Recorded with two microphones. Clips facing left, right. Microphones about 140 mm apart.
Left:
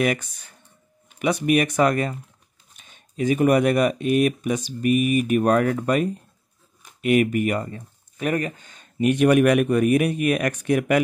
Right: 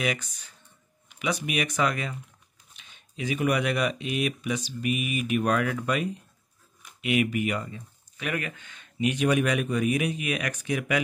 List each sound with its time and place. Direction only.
0.0 s speech: 50° left (ahead or behind)